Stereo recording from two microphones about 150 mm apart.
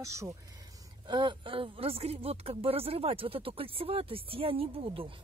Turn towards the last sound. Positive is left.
turn(degrees=-40)  # may be behind; listen again after turning